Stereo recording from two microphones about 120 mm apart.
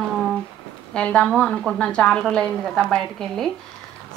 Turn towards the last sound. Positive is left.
turn(degrees=5)  # may be behind; listen again after turning